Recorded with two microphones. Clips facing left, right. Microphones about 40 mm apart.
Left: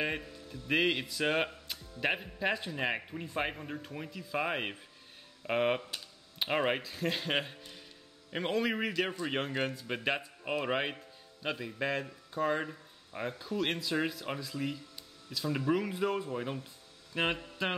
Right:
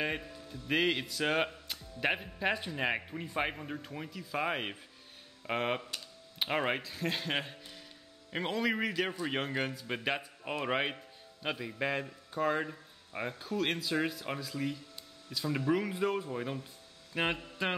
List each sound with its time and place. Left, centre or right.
0.0 s speech: centre